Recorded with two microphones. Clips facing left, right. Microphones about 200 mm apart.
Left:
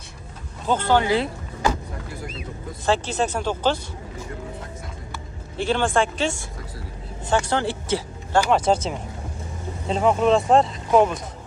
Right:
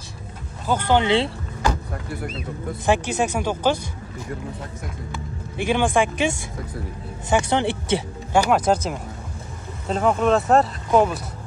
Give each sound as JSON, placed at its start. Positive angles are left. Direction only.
{"t": 0.7, "sound": "speech", "side_deg": -15}
{"t": 2.8, "sound": "speech", "side_deg": -15}
{"t": 5.6, "sound": "speech", "side_deg": -15}
{"t": 9.8, "sound": "speech", "side_deg": 0}